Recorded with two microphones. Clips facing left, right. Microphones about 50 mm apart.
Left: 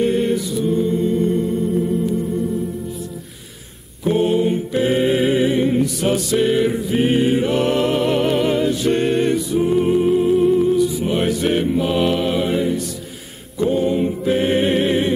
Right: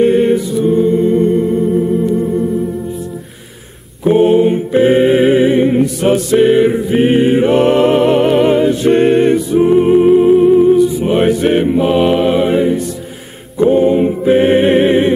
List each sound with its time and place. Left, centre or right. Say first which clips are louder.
0.0 s music: right 7 dB; right
0.7 s a capella: right 8 dB; right
1.2 s music: right 7 dB; right
4.0 s mantra: right 8 dB; right
6.3 s music: right 8 dB; right
11.0 s mantra: right 7 dB; right
13.6 s a sound: right 8 dB; right